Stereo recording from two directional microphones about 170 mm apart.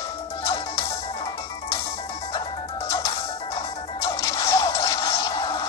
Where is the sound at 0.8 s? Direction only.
35° left (ahead or behind).